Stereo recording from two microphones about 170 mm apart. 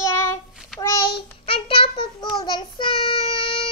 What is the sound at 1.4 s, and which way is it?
Child singing, 30° left (ahead or behind).